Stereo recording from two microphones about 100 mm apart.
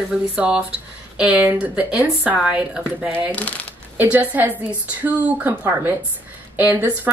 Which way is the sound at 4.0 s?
15° right (ahead or behind).